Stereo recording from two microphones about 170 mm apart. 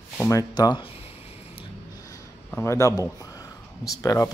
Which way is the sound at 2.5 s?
15° left (ahead or behind).